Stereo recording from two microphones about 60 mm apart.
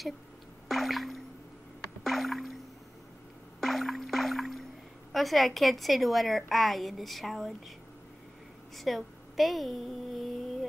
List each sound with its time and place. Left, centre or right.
0.7 s music: centre
2.0 s rowboat: centre
3.6 s music: centre
5.1 s a woman's voice: centre
8.7 s a sound: centre